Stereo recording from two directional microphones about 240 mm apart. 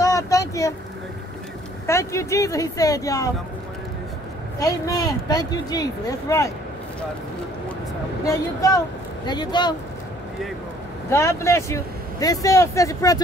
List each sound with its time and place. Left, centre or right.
0.0 s vehicle: centre
1.9 s speech: centre
4.6 s speech: centre
8.3 s speech: centre
11.1 s speech: centre